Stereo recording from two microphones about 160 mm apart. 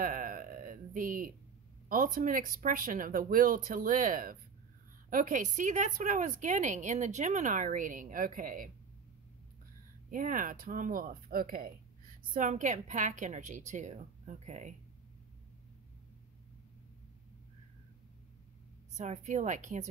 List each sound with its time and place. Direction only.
0.0 s a sound: 55° right (ahead or behind)
1.9 s speech: 60° right (ahead or behind)
10.1 s speech: 55° right (ahead or behind)
12.4 s speech: 50° right (ahead or behind)
18.9 s speech: 45° right (ahead or behind)